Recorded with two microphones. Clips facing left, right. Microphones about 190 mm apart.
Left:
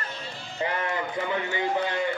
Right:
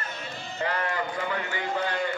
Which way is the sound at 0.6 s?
20° left (ahead or behind).